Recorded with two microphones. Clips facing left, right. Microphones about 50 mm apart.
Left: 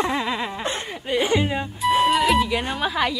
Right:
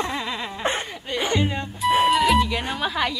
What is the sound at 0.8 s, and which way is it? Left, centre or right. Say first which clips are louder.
Music: left 4 dB; centre.